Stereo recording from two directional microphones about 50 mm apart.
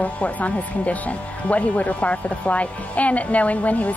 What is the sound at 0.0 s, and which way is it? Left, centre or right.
A woman's voice, left.